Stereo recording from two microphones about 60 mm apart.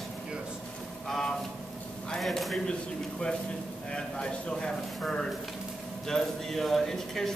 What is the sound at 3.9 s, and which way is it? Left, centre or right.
A man's voice, centre.